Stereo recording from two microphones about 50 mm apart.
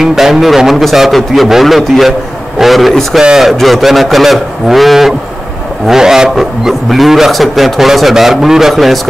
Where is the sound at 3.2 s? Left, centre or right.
Centre.